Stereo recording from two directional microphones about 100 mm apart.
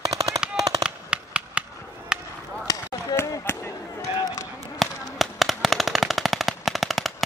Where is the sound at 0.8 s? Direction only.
10° right (ahead or behind).